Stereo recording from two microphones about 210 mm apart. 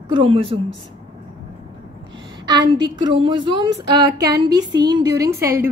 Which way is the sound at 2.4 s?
20° right (ahead or behind).